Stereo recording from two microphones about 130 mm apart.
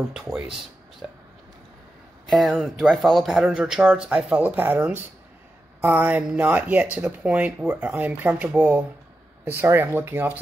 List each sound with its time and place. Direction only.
0.1 s speech: 5° right (ahead or behind)
2.2 s speech: centre (ahead or behind)